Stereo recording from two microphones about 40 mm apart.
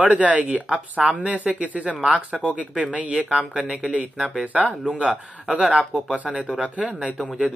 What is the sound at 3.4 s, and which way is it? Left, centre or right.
Speech, right.